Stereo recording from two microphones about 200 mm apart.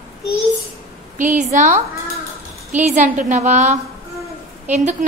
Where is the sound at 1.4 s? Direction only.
40° right (ahead or behind).